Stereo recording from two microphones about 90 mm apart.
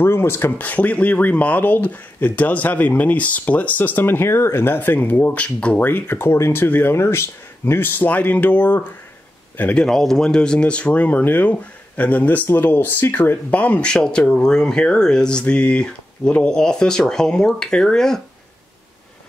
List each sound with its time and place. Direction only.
0.0 s speech: 25° left (ahead or behind)
9.8 s speech: 5° left (ahead or behind)